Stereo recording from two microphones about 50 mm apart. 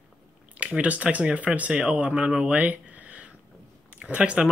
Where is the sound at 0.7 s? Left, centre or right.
Right.